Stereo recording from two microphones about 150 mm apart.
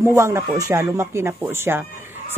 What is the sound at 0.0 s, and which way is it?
Speech, 20° right (ahead or behind).